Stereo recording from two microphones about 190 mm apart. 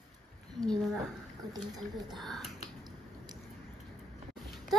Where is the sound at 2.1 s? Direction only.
Centre (ahead or behind).